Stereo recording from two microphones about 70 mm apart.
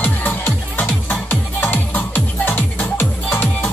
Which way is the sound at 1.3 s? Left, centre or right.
Left.